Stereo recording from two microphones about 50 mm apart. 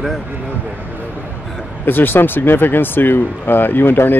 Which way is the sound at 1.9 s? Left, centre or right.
Left.